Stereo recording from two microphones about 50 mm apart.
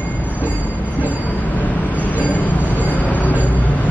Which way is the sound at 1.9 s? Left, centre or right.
Left.